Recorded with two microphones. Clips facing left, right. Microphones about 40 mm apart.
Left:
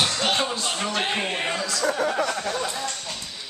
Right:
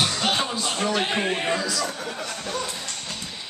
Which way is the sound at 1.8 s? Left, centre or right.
Left.